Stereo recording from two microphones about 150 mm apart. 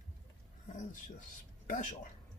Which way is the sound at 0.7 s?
55° left (ahead or behind).